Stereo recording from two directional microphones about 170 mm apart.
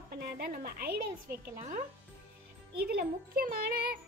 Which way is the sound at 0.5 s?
55° right (ahead or behind).